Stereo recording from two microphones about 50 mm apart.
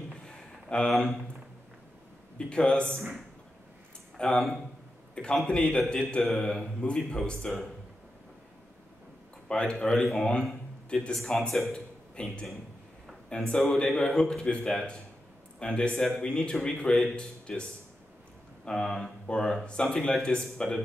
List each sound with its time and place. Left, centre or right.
0.2 s a sound: centre
0.8 s a man's voice: centre
2.3 s a man's voice: centre
4.2 s a man's voice: centre
9.5 s a man's voice: centre
11.4 s speech: centre
12.2 s a man's voice: left
16.0 s a man's voice: centre
16.3 s a man's voice: left
18.7 s a man's voice: centre